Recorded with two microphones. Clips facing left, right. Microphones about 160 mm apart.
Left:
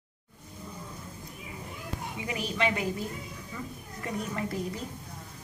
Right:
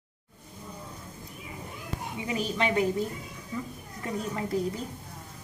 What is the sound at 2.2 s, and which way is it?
Speech, 30° right (ahead or behind).